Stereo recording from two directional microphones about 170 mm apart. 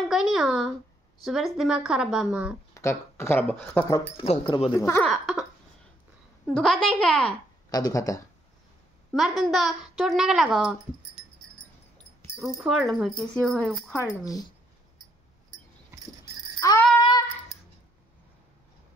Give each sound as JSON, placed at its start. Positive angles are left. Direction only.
{"t": 0.1, "sound": "a woman's voice", "side_deg": 0}
{"t": 2.7, "sound": "speech", "side_deg": 15}
{"t": 4.2, "sound": "speech", "side_deg": 35}
{"t": 4.7, "sound": "speech", "side_deg": 15}
{"t": 5.1, "sound": "a woman's voice", "side_deg": 0}
{"t": 6.4, "sound": "a woman's voice", "side_deg": 5}
{"t": 7.2, "sound": "speech", "side_deg": 20}
{"t": 9.1, "sound": "a woman's voice", "side_deg": 0}
{"t": 11.5, "sound": "wheeze", "side_deg": 5}
{"t": 12.6, "sound": "a woman's voice", "side_deg": 0}
{"t": 13.8, "sound": "speech", "side_deg": 15}
{"t": 16.5, "sound": "bicycle bell", "side_deg": 20}